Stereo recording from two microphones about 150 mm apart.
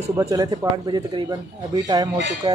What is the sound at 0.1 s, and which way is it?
A man's voice, 20° right (ahead or behind).